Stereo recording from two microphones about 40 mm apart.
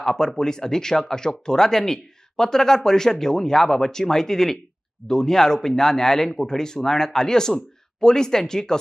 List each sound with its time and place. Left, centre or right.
0.0 s speech: centre